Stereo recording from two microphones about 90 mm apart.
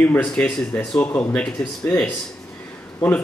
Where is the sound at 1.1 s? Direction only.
25° left (ahead or behind).